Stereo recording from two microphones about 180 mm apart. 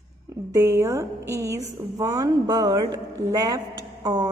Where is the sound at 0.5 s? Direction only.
15° right (ahead or behind).